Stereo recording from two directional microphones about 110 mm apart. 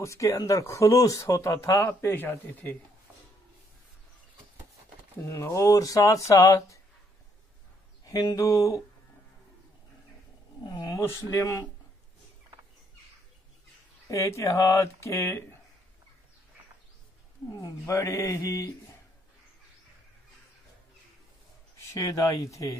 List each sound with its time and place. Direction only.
0.0 s speech: 30° left (ahead or behind)
5.2 s speech: 30° left (ahead or behind)
8.0 s speech: 35° left (ahead or behind)
10.6 s speech: 35° left (ahead or behind)
14.0 s speech: 30° left (ahead or behind)
17.6 s speech: 30° left (ahead or behind)
21.9 s speech: 30° left (ahead or behind)